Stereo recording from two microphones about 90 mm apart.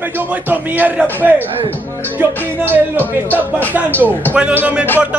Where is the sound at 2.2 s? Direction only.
20° right (ahead or behind).